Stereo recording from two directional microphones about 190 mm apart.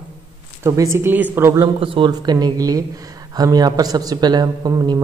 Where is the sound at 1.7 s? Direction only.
25° right (ahead or behind).